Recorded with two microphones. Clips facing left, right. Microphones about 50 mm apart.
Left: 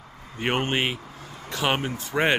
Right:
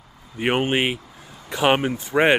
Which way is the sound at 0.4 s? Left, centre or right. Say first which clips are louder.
Right 4 dB; centre.